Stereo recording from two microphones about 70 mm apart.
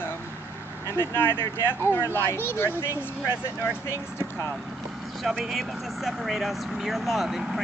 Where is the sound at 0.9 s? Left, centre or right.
Left.